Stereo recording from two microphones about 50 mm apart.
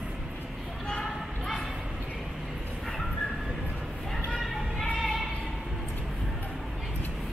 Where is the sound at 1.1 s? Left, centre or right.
Centre.